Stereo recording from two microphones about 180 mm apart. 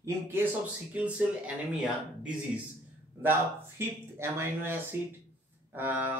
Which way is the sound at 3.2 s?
10° right (ahead or behind).